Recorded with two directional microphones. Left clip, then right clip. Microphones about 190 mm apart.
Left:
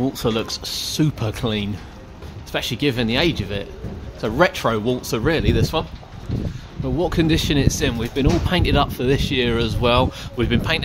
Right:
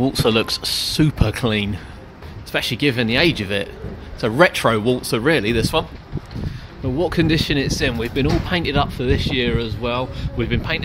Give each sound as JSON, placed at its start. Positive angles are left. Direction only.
{"t": 0.0, "sound": "speech", "side_deg": -10}
{"t": 7.0, "sound": "speech", "side_deg": 0}
{"t": 9.6, "sound": "speech", "side_deg": 25}